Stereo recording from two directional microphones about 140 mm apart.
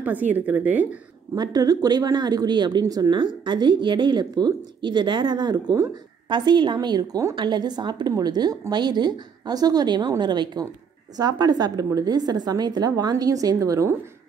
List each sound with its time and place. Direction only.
0.0 s speech: 10° right (ahead or behind)
1.3 s a woman's voice: 30° right (ahead or behind)